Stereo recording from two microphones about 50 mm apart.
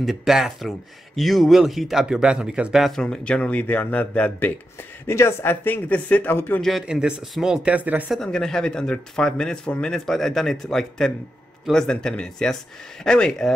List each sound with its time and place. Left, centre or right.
0.0 s speech: centre
2.0 s speech: centre
2.9 s speech: centre
5.0 s speech: left
5.5 s a man's voice: left
5.9 s speech: left
6.3 s a man's voice: left
6.9 s speech: centre
7.6 s speech: right
8.2 s speech: centre